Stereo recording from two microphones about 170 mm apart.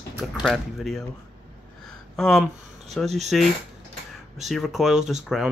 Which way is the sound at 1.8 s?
Centre (ahead or behind).